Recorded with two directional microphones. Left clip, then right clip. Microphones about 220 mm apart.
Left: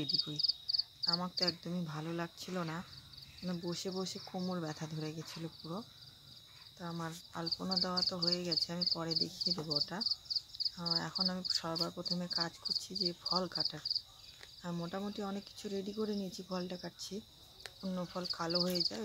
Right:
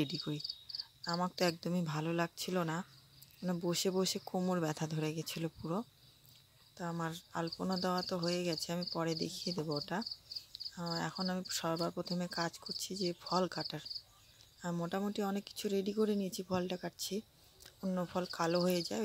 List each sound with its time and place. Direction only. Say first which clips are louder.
0.0 s speech: left 5 dB; 35° right (ahead or behind)